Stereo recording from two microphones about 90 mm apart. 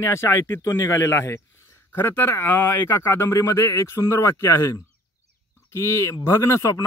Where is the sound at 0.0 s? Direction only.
30° left (ahead or behind).